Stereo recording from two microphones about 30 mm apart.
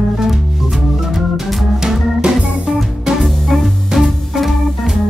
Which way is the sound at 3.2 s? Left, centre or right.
Centre.